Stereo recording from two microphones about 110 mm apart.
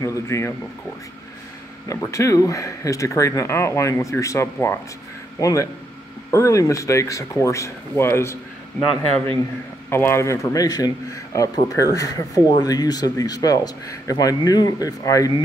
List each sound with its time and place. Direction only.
0.0 s speech: 25° left (ahead or behind)
1.9 s speech: 30° left (ahead or behind)
9.8 s speech: 20° left (ahead or behind)